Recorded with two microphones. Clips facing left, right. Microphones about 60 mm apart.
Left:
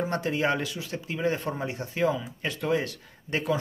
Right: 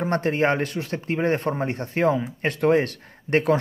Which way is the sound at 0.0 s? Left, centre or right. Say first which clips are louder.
Right 5 dB; right.